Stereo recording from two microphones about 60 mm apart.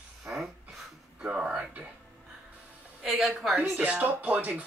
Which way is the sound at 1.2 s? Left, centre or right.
Centre.